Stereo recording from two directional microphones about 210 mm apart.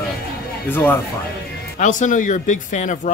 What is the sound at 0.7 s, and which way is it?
Speech, 10° left (ahead or behind).